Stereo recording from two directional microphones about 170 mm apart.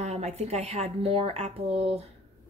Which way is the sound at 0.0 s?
40° right (ahead or behind).